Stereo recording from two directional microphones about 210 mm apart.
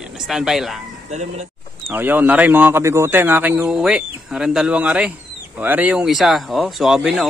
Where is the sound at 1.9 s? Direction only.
10° right (ahead or behind).